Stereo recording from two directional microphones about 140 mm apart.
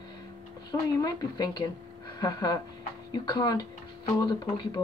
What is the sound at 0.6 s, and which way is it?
A woman's voice, 30° left (ahead or behind).